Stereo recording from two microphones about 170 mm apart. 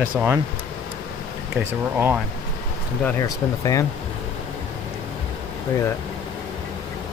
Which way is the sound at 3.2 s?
20° left (ahead or behind).